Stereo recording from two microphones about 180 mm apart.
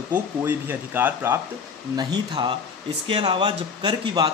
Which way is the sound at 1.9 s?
25° right (ahead or behind).